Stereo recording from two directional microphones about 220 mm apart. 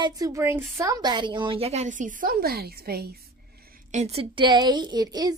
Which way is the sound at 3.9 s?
30° right (ahead or behind).